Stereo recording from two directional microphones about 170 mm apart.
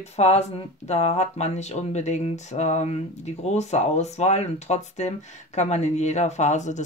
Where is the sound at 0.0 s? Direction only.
40° left (ahead or behind).